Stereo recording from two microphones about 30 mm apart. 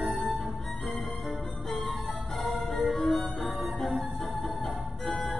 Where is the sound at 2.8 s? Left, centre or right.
Left.